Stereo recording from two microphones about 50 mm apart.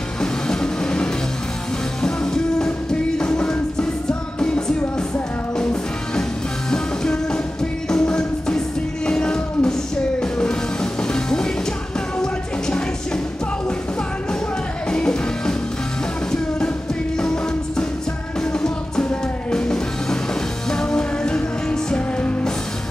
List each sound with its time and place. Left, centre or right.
0.2 s train: centre
2.0 s music: centre
7.9 s music: centre
14.9 s music: centre
19.5 s music: centre